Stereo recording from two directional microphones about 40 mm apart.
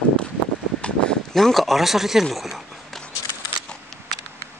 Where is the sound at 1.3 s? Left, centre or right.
Centre.